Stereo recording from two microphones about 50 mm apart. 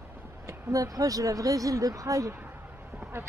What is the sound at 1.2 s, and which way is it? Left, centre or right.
Speech, right.